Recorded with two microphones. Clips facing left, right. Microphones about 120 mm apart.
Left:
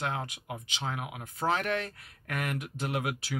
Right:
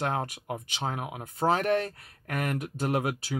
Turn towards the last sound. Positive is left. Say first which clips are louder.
# right 4 dB
turn(degrees=-35)  # may be behind; listen again after turning